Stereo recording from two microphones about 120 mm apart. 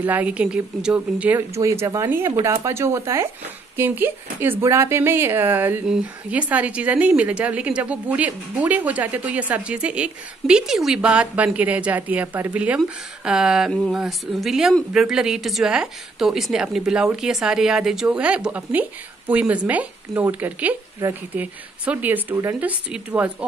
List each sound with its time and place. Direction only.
0.0 s speech: 15° right (ahead or behind)
1.5 s speech: 25° right (ahead or behind)
22.6 s speech: 10° right (ahead or behind)